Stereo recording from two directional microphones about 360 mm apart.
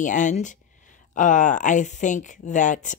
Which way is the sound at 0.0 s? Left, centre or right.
Left.